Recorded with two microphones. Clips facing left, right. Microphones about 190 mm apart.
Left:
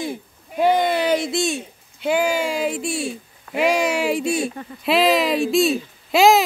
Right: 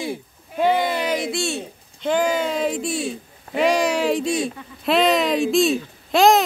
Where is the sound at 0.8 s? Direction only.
30° left (ahead or behind).